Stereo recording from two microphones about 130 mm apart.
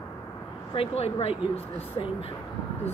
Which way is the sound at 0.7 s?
50° left (ahead or behind).